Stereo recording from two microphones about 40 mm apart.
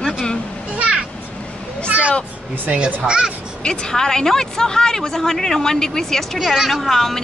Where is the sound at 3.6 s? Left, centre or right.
Left.